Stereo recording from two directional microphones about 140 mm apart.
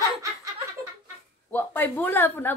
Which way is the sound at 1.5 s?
10° left (ahead or behind).